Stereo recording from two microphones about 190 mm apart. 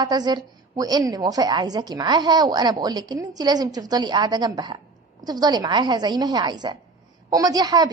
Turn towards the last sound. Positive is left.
turn(degrees=-20)  # may be behind; listen again after turning